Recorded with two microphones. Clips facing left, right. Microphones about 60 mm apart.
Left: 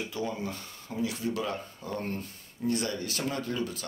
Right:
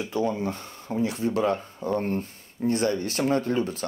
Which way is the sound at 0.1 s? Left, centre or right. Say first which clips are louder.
Right 7 dB; right.